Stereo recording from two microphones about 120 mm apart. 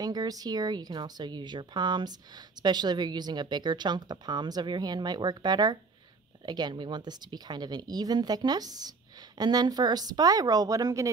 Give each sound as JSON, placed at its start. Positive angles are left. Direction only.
{"t": 0.0, "sound": "speech", "side_deg": -35}